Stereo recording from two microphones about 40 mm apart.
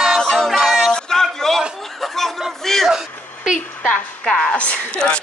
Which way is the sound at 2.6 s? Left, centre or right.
Centre.